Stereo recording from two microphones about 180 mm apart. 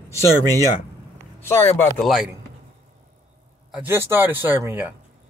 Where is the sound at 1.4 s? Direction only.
10° left (ahead or behind).